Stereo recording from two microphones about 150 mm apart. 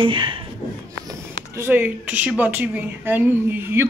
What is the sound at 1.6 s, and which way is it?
A woman's voice, 10° right (ahead or behind).